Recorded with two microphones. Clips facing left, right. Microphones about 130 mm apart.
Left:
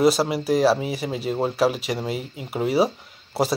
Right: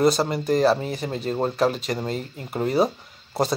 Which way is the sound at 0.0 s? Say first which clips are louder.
Left 1 dB; 5° left (ahead or behind).